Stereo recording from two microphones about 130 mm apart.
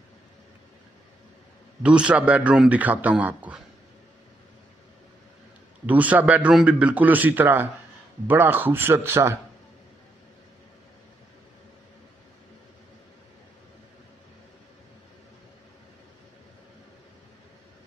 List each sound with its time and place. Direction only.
1.8 s a man's voice: 10° right (ahead or behind)
5.9 s a man's voice: 10° right (ahead or behind)